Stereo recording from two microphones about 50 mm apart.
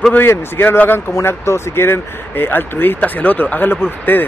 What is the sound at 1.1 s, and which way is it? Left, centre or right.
Speech, left.